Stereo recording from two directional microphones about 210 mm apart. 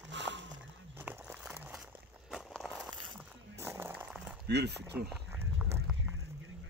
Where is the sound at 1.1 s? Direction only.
5° right (ahead or behind).